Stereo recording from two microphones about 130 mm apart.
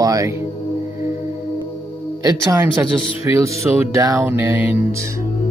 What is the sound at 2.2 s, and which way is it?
Speech, 25° right (ahead or behind).